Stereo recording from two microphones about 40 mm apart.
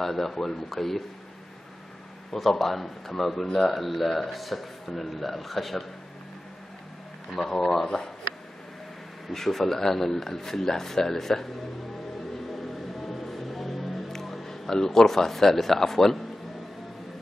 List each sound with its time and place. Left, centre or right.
0.0 s speech: centre
2.3 s speech: centre
7.2 s speech: centre
9.3 s speech: centre
13.0 s music: centre